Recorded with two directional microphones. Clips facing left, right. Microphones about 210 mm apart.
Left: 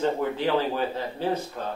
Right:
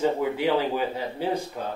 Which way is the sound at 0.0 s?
10° right (ahead or behind).